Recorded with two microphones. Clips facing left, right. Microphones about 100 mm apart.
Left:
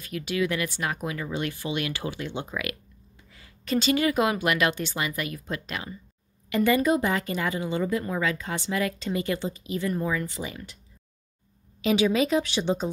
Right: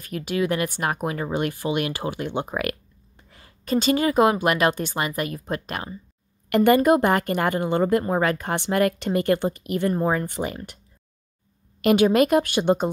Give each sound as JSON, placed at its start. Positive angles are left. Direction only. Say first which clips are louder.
{"t": 0.0, "sound": "speech", "louder": "right 3 dB", "side_deg": -45}
{"t": 11.8, "sound": "speech", "louder": "right 5 dB", "side_deg": -55}